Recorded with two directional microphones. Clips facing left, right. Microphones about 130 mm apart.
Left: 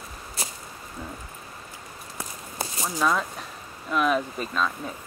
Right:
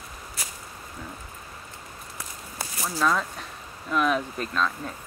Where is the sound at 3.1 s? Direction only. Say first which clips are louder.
Even; 5° left (ahead or behind).